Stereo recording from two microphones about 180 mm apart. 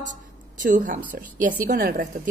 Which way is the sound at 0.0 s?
45° right (ahead or behind).